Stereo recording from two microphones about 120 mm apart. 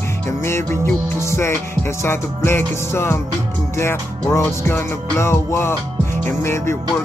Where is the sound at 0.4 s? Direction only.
20° left (ahead or behind).